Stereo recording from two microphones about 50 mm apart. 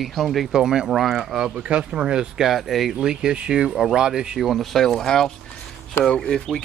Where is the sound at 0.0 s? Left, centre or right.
Centre.